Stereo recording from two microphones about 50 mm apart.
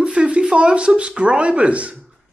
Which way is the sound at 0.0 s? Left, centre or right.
Right.